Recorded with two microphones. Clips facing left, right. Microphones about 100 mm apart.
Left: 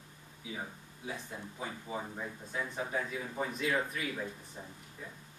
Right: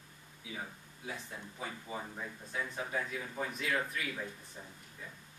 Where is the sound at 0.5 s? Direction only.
10° left (ahead or behind).